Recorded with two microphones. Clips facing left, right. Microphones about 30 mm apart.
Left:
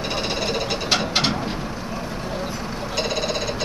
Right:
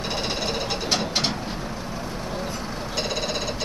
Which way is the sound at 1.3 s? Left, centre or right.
Left.